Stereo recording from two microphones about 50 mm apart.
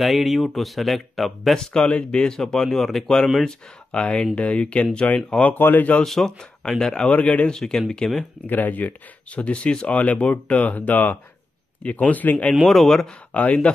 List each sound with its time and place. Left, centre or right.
0.0 s speech: centre
1.9 s speech: left; by 3.1 s centre
3.4 s speech: centre
5.1 s speech: left
6.0 s speech: centre
8.5 s speech: left
12.6 s speech: centre
13.3 s speech: left